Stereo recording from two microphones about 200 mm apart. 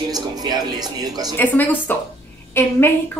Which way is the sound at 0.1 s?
20° right (ahead or behind).